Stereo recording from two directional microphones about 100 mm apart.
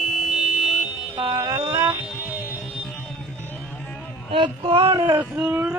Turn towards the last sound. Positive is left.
turn(degrees=-15)  # may be behind; listen again after turning